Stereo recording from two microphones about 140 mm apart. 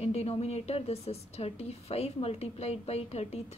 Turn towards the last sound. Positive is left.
turn(degrees=50)  # may be behind; listen again after turning